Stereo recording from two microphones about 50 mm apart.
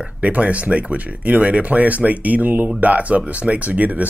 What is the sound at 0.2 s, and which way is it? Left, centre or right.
Speech, right.